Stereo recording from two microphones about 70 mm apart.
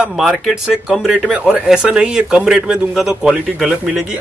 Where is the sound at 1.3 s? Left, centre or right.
Centre.